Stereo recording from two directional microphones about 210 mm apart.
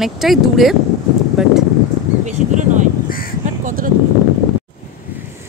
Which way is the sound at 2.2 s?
35° right (ahead or behind).